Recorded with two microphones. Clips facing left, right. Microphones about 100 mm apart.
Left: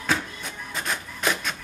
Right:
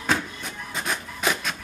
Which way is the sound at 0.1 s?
Centre (ahead or behind).